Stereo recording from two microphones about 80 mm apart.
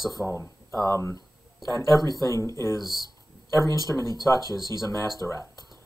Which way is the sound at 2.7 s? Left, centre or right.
Right.